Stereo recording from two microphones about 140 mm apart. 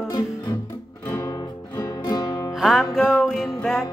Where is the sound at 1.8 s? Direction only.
30° left (ahead or behind).